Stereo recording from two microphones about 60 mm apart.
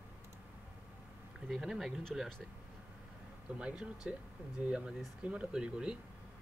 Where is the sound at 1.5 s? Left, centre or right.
Centre.